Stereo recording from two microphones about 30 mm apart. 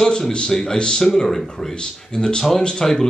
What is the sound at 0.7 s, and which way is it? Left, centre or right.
Speech, left.